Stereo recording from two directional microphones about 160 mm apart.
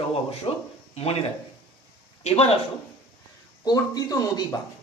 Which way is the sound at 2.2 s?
40° left (ahead or behind).